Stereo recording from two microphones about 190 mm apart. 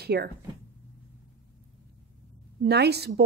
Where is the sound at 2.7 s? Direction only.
60° right (ahead or behind).